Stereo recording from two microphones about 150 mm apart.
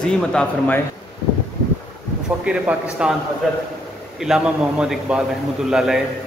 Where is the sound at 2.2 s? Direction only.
5° right (ahead or behind).